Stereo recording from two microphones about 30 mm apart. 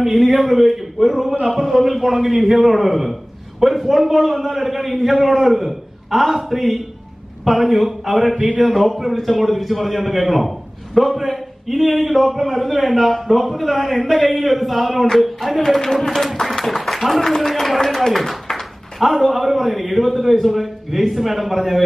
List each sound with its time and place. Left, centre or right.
0.0 s a man's voice: centre
15.8 s speech: centre
16.6 s a sound: centre
17.4 s a man's voice: centre